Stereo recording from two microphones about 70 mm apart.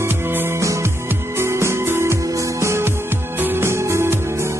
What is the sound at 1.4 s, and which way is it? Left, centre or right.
Music, right.